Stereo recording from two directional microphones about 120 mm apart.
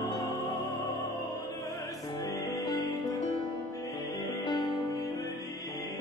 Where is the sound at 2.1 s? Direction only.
30° left (ahead or behind).